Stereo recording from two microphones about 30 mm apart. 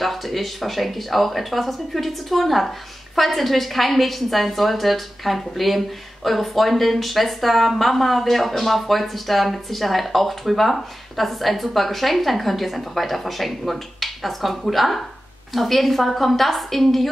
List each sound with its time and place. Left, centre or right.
0.0 s a woman's voice: centre